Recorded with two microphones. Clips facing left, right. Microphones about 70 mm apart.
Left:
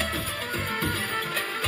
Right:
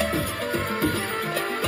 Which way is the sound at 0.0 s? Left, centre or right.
Right.